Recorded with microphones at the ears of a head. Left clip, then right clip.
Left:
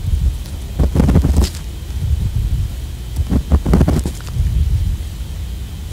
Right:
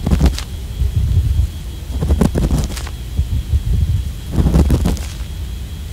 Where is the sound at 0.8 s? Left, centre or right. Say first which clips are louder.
Left 13 dB; left.